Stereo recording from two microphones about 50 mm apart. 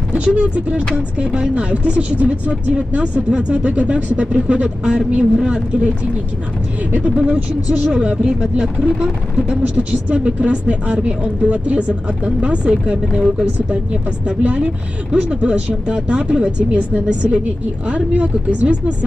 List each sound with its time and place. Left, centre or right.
0.1 s speech: right
7.0 s speech: right
7.9 s speech: right
9.6 s speech: right
10.1 s speech: right